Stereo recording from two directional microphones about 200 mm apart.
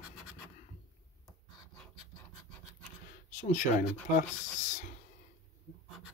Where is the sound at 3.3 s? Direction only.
40° left (ahead or behind).